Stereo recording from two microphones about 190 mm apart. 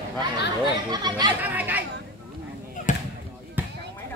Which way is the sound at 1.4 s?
10° right (ahead or behind).